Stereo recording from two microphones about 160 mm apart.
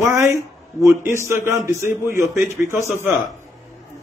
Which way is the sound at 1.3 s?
15° right (ahead or behind).